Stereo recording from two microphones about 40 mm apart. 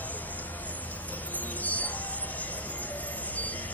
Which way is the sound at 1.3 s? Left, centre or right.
Left.